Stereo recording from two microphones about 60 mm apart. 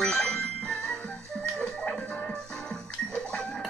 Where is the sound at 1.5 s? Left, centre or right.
Centre.